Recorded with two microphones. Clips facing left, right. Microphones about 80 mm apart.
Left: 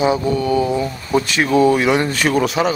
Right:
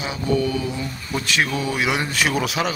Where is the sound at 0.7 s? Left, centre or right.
Left.